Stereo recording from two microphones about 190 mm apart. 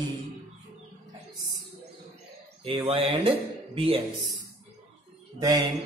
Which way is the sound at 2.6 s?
30° right (ahead or behind).